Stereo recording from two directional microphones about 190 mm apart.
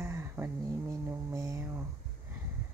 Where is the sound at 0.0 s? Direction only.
15° right (ahead or behind).